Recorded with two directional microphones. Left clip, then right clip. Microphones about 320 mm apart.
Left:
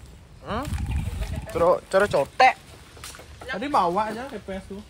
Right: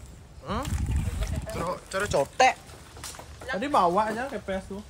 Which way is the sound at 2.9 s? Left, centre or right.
Right.